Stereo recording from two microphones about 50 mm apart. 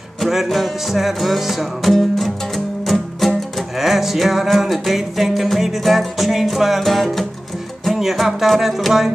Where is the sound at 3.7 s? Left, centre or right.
Centre.